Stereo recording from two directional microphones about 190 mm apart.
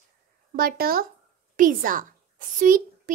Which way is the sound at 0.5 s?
50° right (ahead or behind).